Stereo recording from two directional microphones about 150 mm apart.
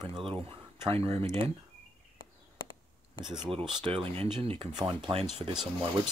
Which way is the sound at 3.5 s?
35° right (ahead or behind).